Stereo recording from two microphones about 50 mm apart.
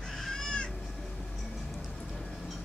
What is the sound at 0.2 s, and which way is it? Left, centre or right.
Cat, centre.